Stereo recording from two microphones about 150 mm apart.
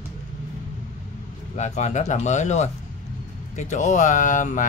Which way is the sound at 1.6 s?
55° left (ahead or behind).